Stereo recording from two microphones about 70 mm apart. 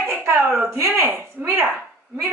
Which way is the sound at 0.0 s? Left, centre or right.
Right.